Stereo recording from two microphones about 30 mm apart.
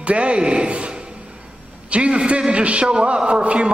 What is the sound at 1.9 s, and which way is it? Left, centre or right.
A man's voice, right.